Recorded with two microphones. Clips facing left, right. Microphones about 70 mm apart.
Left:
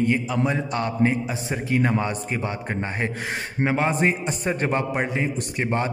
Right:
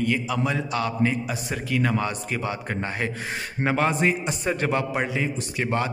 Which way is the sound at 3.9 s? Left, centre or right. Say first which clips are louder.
Left 1 dB; left.